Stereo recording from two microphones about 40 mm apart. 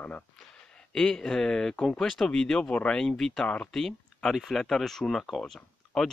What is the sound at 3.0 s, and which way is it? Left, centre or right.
Speech, centre.